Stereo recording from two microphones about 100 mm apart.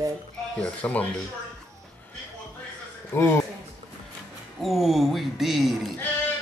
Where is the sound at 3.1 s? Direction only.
25° left (ahead or behind).